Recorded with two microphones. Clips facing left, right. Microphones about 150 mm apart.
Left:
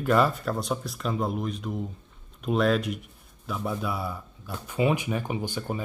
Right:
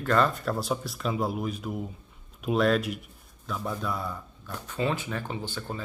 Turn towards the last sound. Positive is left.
turn(degrees=15)  # may be behind; listen again after turning